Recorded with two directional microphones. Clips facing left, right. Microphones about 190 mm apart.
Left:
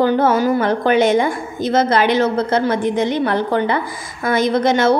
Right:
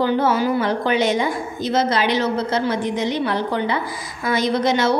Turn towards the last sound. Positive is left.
turn(degrees=50)  # may be behind; listen again after turning